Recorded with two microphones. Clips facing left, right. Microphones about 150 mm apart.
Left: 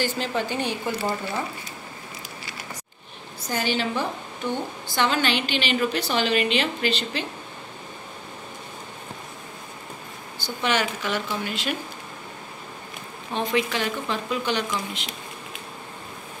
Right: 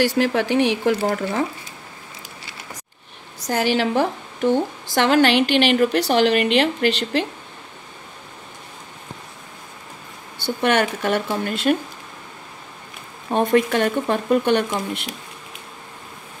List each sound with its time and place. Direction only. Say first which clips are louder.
0.0 s a woman's voice: right 7 dB; 70° right (ahead or behind)
3.4 s a woman's voice: right 6 dB; 75° right (ahead or behind)
10.4 s speech: right 6 dB; 60° right (ahead or behind)
13.3 s speech: right 7 dB; 50° right (ahead or behind)